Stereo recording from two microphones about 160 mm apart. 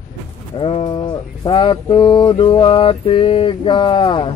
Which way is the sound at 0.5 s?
35° left (ahead or behind).